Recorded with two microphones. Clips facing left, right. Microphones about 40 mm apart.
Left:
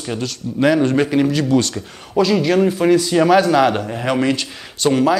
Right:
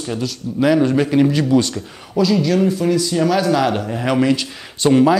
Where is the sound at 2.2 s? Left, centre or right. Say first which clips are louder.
Left 1 dB; left; by 5.0 s centre.